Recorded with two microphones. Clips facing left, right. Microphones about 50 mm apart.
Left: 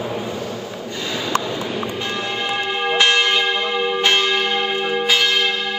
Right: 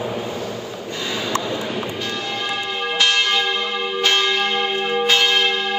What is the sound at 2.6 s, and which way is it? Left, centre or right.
Church bell, left.